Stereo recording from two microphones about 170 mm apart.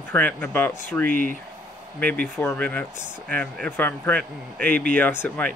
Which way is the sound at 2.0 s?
10° left (ahead or behind).